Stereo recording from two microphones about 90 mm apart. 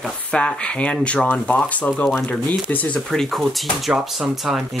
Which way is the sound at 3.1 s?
Centre (ahead or behind).